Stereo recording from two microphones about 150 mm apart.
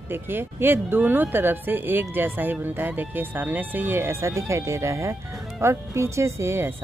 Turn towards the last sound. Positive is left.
turn(degrees=-15)  # may be behind; listen again after turning